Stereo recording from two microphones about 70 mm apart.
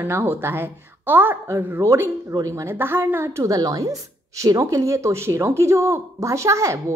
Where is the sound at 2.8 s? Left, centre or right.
Right.